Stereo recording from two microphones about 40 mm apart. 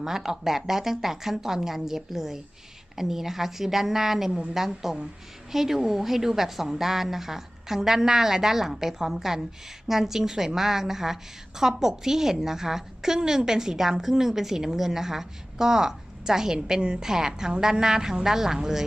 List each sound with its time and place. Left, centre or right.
0.0 s a woman's voice: centre